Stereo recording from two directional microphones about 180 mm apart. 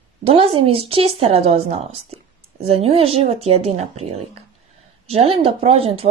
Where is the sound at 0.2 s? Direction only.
30° right (ahead or behind).